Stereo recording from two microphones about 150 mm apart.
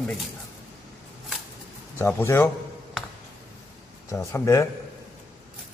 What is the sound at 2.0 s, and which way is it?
Speech, 15° left (ahead or behind).